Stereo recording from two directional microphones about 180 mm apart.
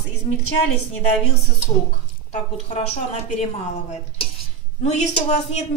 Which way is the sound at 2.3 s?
35° left (ahead or behind).